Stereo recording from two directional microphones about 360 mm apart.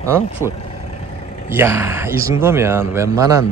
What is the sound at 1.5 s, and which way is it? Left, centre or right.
Speech, centre.